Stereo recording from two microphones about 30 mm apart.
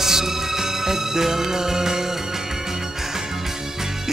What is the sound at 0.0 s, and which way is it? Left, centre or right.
Music, centre.